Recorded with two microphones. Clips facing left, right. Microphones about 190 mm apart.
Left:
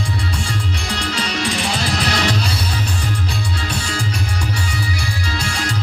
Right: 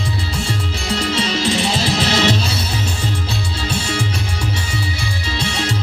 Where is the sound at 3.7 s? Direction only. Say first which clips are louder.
Right 3 dB; 25° right (ahead or behind).